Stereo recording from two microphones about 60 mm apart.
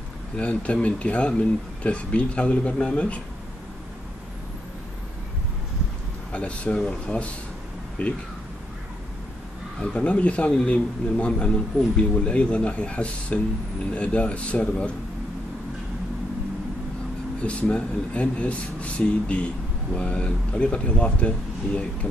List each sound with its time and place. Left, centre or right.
0.4 s speech: left
6.3 s speech: left
9.8 s speech: left
17.4 s speech: left